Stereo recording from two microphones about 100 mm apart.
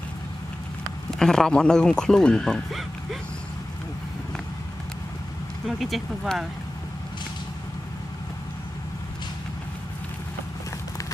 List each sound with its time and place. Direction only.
1.2 s speech: 5° left (ahead or behind)
5.7 s speech: centre (ahead or behind)